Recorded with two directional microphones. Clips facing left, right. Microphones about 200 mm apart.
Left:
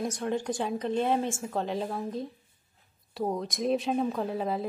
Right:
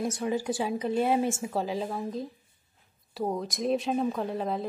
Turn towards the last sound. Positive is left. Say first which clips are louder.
# even
turn(degrees=0)  # may be behind; listen again after turning